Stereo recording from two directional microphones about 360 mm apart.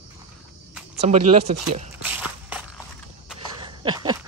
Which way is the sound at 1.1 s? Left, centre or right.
Centre.